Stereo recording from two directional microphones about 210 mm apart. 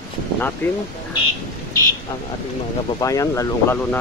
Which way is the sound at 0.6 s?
10° left (ahead or behind).